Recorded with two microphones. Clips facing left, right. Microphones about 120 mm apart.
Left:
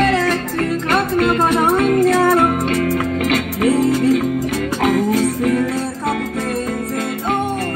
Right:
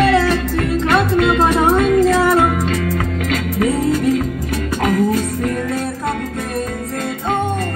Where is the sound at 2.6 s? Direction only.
55° left (ahead or behind).